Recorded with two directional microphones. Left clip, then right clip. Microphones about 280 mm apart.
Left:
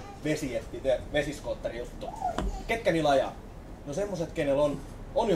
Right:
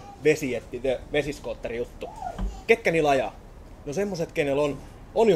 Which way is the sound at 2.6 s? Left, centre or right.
Right.